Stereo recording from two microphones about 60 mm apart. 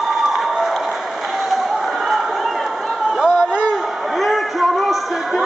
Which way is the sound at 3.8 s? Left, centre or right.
Centre.